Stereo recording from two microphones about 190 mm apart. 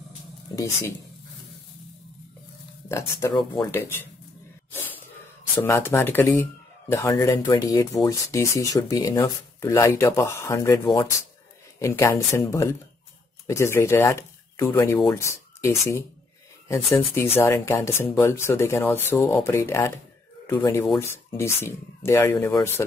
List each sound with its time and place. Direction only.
2.9 s speech: 15° left (ahead or behind)
4.7 s a sound: 10° left (ahead or behind)
5.6 s speech: 10° left (ahead or behind)